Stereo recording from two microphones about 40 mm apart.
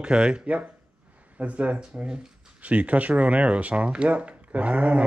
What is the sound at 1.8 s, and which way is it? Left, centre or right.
Speech, right.